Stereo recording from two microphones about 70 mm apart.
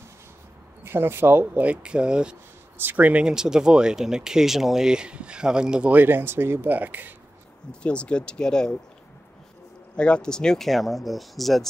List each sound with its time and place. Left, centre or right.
0.8 s speech: right
1.7 s speech: centre
2.8 s speech: right
7.8 s speech: centre
9.9 s speech: centre